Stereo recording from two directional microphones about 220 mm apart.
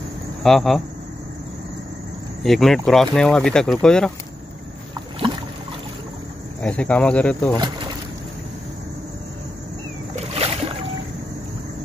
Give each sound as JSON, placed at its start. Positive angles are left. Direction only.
{"t": 0.4, "sound": "speech", "side_deg": 0}
{"t": 2.4, "sound": "speech", "side_deg": 0}
{"t": 6.6, "sound": "speech", "side_deg": 5}
{"t": 7.5, "sound": "speech", "side_deg": -20}
{"t": 10.3, "sound": "boat", "side_deg": -25}